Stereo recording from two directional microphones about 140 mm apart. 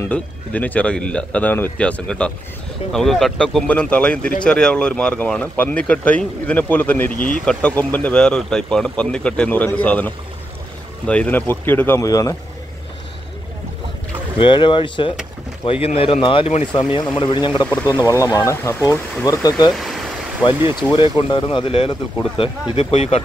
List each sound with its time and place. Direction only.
0.0 s speech: 10° left (ahead or behind)
14.4 s speech: 35° left (ahead or behind)
18.0 s speech: 25° left (ahead or behind)
19.7 s vehicle: centre (ahead or behind)
20.9 s speech: 35° left (ahead or behind)